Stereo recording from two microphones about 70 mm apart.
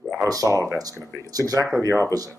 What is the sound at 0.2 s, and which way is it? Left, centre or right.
Speech, right.